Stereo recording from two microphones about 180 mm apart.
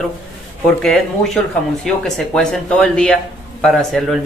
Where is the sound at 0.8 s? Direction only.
Centre (ahead or behind).